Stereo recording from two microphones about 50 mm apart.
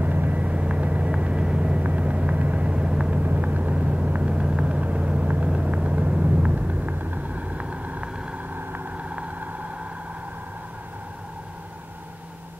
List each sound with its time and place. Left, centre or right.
0.0 s vehicle: right